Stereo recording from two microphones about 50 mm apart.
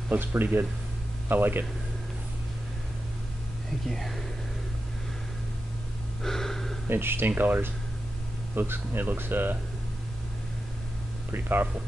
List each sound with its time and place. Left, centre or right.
0.1 s speech: right
3.9 s speech: centre
6.2 s a sound: centre
6.9 s speech: right
11.3 s speech: right